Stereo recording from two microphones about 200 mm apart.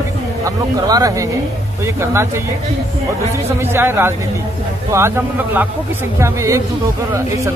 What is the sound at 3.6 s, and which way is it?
A man's voice, 10° right (ahead or behind).